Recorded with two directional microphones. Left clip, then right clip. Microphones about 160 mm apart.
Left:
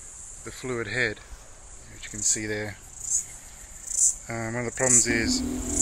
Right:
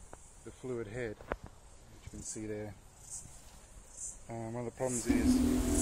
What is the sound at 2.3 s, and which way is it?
Cricket, 10° left (ahead or behind).